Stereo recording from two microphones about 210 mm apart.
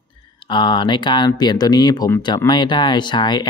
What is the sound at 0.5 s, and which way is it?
Speech, 20° left (ahead or behind).